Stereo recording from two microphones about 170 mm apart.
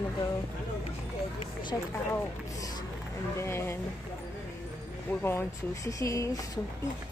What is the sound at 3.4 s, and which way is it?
Speech, 15° left (ahead or behind).